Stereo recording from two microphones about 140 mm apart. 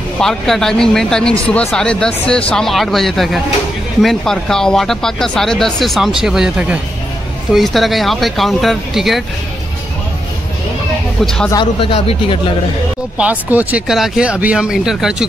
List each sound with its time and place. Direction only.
0.2 s speech: 5° left (ahead or behind)
11.2 s speech: 5° left (ahead or behind)
11.5 s speech: 40° left (ahead or behind)
13.2 s speech: 10° right (ahead or behind)